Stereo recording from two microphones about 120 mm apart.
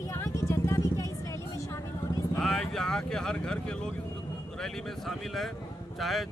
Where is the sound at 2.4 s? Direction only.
5° left (ahead or behind).